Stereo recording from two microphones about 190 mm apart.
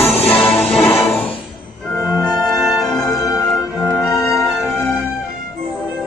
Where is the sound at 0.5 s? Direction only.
10° left (ahead or behind).